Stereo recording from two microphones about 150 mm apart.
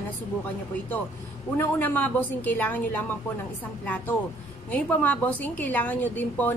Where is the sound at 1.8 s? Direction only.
10° left (ahead or behind).